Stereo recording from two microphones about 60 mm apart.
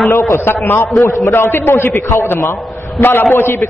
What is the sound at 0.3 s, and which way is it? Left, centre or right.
A man's voice, left.